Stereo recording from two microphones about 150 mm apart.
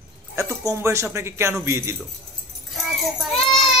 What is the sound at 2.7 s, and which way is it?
Child singing, centre (ahead or behind).